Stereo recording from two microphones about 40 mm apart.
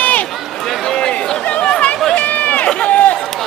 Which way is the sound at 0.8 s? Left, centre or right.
Centre.